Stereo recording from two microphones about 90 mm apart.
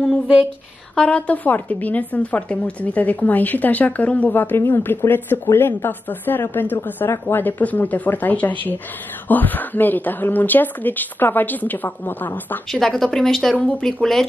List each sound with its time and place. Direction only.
0.9 s a woman's voice: 10° left (ahead or behind)
12.7 s speech: 5° left (ahead or behind)